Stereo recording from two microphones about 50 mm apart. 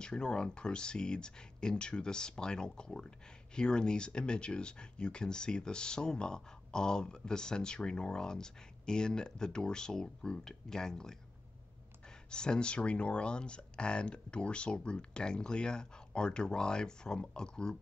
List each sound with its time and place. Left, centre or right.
0.0 s speech: centre
12.3 s speech: centre